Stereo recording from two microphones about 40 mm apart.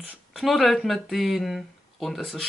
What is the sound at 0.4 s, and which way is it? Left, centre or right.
Speech, centre.